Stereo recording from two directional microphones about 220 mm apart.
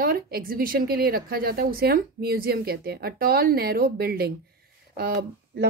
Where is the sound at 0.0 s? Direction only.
45° right (ahead or behind).